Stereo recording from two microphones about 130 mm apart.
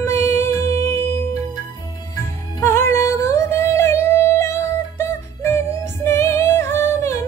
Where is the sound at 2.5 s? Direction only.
20° left (ahead or behind).